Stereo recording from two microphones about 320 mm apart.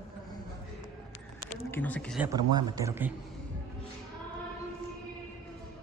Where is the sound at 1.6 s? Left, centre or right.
Centre.